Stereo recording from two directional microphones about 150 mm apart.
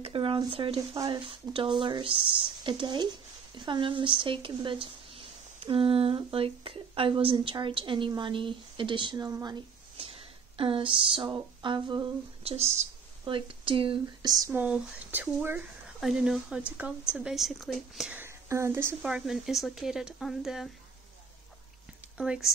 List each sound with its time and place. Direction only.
0.0 s a woman's voice: 35° right (ahead or behind)
9.9 s speech: 40° right (ahead or behind)
12.5 s speech: 45° right (ahead or behind)
13.2 s speech: 35° right (ahead or behind)
14.5 s speech: 10° right (ahead or behind)
18.1 s speech: 15° right (ahead or behind)
19.0 s speech: 5° right (ahead or behind)
22.1 s speech: 5° right (ahead or behind)